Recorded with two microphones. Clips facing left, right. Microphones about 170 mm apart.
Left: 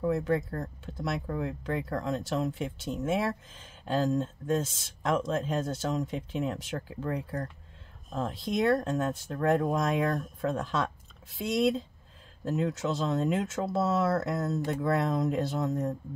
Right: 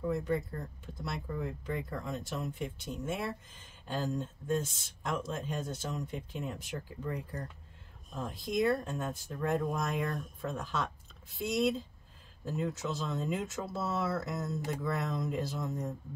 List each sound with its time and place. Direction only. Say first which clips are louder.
0.0 s speech: left 5 dB; 85° left
9.3 s speech: left 6 dB; 75° left (ahead or behind)